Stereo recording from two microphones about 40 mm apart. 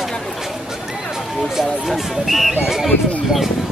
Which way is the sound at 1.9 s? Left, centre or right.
Centre.